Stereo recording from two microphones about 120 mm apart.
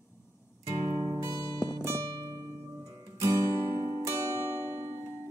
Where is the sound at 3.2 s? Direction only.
25° right (ahead or behind).